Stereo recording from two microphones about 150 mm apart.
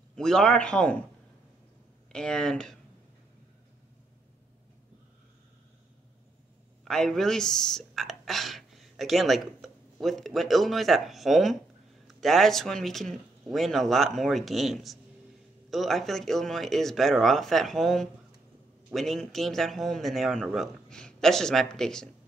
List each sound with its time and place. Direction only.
0.1 s a man's voice: 5° left (ahead or behind)
2.1 s speech: 5° left (ahead or behind)
6.8 s speech: 5° left (ahead or behind)